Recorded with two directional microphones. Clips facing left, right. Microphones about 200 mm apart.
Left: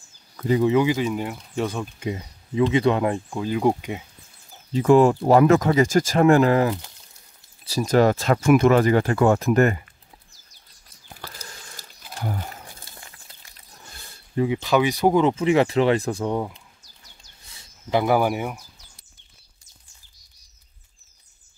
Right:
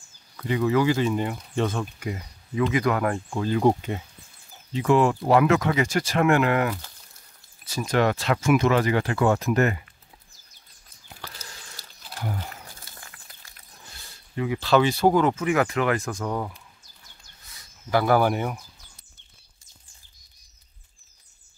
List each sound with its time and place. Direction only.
0.6 s speech: 20° left (ahead or behind)
0.9 s speech: 5° left (ahead or behind)
2.0 s speech: 25° left (ahead or behind)
3.3 s speech: 5° left (ahead or behind)
4.7 s speech: 40° left (ahead or behind)
8.4 s speech: 50° left (ahead or behind)
12.8 s a sound: 25° left (ahead or behind)
14.3 s speech: 30° left (ahead or behind)
14.6 s speech: 15° left (ahead or behind)
15.3 s speech: 30° left (ahead or behind)
17.6 s a sound: 20° left (ahead or behind)